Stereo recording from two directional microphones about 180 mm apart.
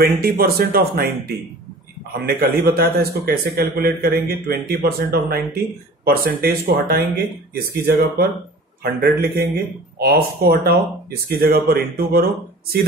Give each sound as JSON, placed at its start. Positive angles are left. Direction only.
{"t": 0.0, "sound": "a man's voice", "side_deg": -55}
{"t": 2.1, "sound": "a man's voice", "side_deg": -60}
{"t": 10.5, "sound": "a man's voice", "side_deg": -55}